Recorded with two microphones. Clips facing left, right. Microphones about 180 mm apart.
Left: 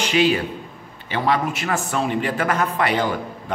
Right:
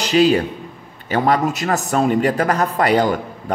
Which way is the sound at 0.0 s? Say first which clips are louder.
Right 4 dB; 40° right (ahead or behind).